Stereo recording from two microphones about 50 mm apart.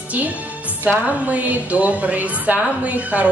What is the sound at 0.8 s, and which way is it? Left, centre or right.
A woman's voice, right.